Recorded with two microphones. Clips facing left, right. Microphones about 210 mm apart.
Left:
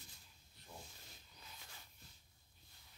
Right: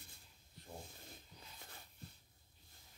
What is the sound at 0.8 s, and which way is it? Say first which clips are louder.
Dog: right 4 dB; 55° right (ahead or behind).